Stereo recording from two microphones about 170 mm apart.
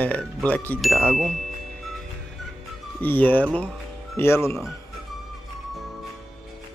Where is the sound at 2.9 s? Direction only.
10° left (ahead or behind).